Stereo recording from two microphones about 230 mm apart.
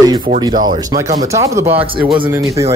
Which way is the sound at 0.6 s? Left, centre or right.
Centre.